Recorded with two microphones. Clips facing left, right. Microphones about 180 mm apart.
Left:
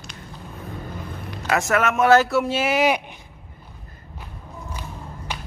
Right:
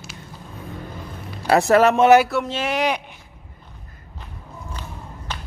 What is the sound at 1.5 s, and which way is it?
Speech, 35° right (ahead or behind).